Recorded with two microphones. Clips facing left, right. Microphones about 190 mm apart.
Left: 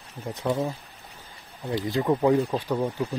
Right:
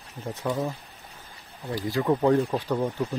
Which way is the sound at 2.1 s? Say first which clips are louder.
Even; 5° left (ahead or behind).